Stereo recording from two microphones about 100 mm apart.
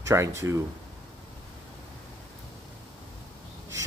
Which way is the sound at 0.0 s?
30° right (ahead or behind).